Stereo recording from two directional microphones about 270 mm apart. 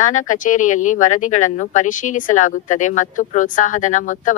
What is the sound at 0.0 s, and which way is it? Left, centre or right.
Speech, left.